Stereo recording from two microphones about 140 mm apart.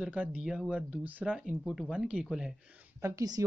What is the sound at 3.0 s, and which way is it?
Speech, 25° right (ahead or behind).